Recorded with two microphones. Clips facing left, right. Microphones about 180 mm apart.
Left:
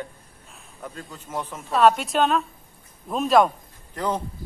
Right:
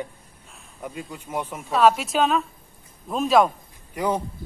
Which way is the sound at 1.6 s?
Centre (ahead or behind).